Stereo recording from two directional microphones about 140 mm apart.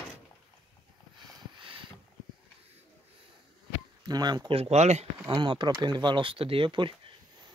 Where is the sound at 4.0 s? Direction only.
30° right (ahead or behind); by 5.0 s 50° right (ahead or behind).